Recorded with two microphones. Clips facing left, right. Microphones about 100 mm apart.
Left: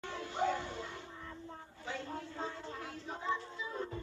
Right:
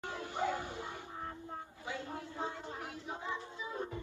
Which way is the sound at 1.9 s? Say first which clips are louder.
Left 1 dB; 20° right (ahead or behind).